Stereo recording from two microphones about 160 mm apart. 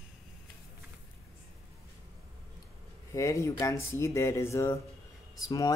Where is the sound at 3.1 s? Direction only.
20° left (ahead or behind).